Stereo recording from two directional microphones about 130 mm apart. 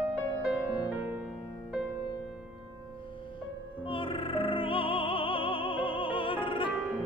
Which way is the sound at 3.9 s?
40° left (ahead or behind).